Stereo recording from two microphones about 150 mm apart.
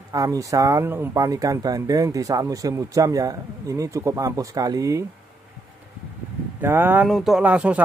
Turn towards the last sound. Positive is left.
turn(degrees=-10)  # may be behind; listen again after turning